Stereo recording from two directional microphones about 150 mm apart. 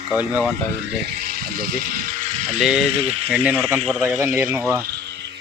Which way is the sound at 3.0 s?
40° right (ahead or behind).